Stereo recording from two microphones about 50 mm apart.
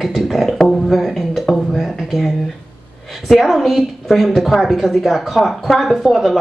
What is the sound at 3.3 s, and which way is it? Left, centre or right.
Speech, centre.